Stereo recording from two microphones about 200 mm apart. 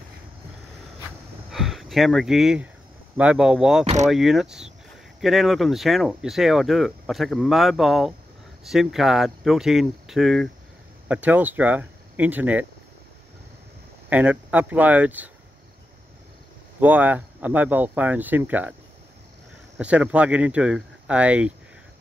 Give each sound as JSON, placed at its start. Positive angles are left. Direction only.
{"t": 1.5, "sound": "speech", "side_deg": 0}
{"t": 3.8, "sound": "speech", "side_deg": -35}
{"t": 4.1, "sound": "speech", "side_deg": 0}
{"t": 14.0, "sound": "speech", "side_deg": -10}
{"t": 16.8, "sound": "speech", "side_deg": -10}
{"t": 19.8, "sound": "speech", "side_deg": -5}